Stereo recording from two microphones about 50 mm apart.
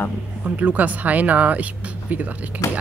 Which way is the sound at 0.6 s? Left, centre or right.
Right.